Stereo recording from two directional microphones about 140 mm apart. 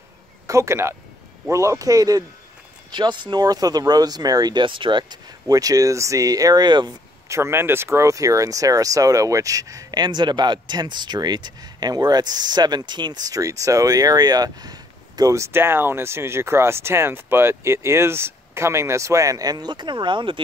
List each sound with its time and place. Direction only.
0.5 s speech: 20° right (ahead or behind)
7.2 s speech: 20° right (ahead or behind); by 20.4 s 35° right (ahead or behind)